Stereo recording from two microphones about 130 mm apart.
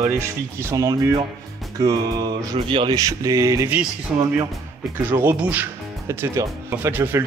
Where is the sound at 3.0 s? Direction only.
25° right (ahead or behind).